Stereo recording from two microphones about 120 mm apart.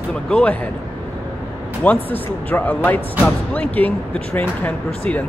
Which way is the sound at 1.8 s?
15° left (ahead or behind).